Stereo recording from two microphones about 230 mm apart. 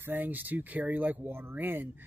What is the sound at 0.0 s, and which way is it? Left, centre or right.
Speech, centre.